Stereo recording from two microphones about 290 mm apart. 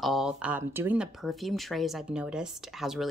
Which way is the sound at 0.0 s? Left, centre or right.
Centre.